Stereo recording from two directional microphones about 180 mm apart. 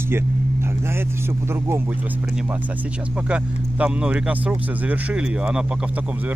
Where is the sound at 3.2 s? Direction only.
5° right (ahead or behind).